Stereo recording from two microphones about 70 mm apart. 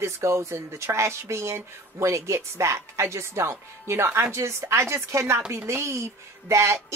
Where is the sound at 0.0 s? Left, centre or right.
Right.